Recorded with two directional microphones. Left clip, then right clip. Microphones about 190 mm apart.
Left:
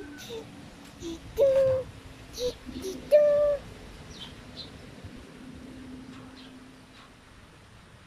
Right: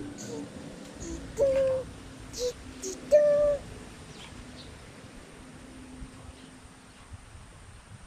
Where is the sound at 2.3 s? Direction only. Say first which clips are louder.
Left 1 dB; 10° left (ahead or behind).